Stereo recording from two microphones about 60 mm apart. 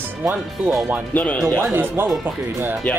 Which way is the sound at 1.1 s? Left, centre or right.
Left.